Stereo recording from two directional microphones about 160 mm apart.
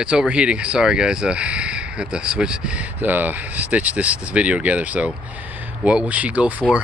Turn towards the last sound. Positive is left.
turn(degrees=-10)  # may be behind; listen again after turning